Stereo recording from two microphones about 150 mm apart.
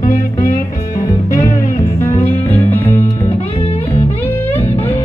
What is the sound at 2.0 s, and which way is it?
Music, 15° left (ahead or behind).